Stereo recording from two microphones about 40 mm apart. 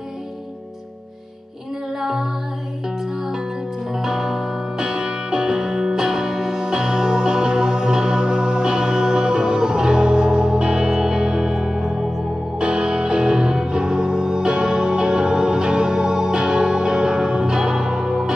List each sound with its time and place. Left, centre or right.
2.0 s music: centre
3.9 s music: centre
12.5 s music: right